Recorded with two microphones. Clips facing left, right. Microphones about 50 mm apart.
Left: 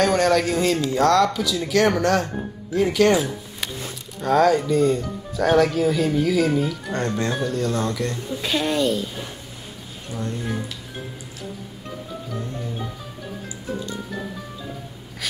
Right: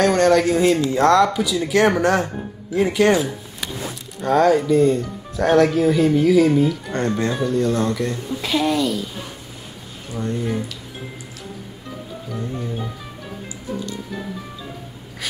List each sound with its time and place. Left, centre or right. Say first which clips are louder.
0.0 s speech: right 3 dB; centre; by 1.2 s right
1.2 s speech: right 3 dB; centre
4.2 s speech: right 2 dB; centre
8.6 s a woman's voice: even; left
10.1 s speech: right 4 dB; centre